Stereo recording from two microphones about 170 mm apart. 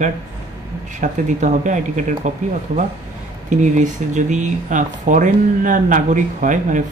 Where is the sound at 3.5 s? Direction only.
45° right (ahead or behind).